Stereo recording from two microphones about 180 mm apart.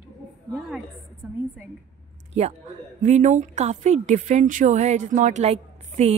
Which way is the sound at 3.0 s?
40° right (ahead or behind).